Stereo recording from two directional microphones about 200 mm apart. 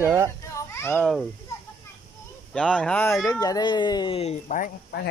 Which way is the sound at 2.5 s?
5° left (ahead or behind).